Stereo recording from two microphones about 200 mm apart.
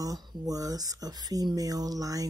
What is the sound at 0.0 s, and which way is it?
Speech, 15° right (ahead or behind).